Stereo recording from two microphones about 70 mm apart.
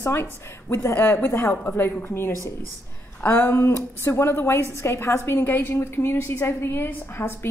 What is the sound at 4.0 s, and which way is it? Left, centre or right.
Speech, left.